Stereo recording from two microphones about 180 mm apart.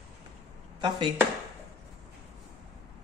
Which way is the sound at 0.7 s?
25° right (ahead or behind).